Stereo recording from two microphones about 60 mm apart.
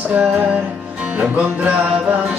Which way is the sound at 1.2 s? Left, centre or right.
Right.